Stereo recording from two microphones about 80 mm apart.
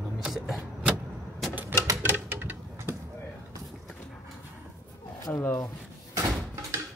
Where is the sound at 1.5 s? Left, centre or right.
Right.